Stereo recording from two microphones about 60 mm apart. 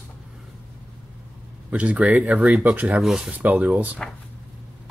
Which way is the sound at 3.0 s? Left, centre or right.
Centre.